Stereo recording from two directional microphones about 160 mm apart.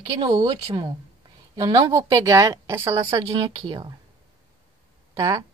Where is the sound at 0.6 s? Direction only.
30° right (ahead or behind).